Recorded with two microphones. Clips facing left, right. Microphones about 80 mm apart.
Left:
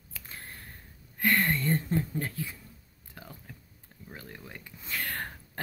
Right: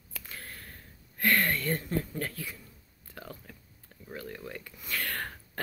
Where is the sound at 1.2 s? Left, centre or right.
Left.